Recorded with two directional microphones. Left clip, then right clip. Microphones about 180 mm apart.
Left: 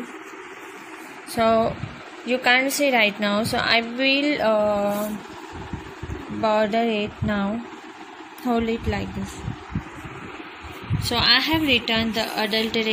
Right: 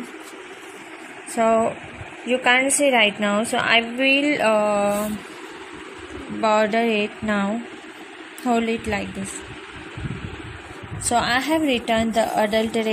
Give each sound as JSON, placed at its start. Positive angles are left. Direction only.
{"t": 1.3, "sound": "a woman's voice", "side_deg": 0}
{"t": 6.4, "sound": "speech", "side_deg": -5}
{"t": 7.0, "sound": "a woman's voice", "side_deg": -15}
{"t": 11.1, "sound": "a woman's voice", "side_deg": -35}